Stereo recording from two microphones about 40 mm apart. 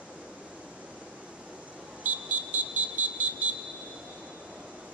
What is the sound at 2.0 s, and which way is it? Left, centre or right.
Vehicle, right.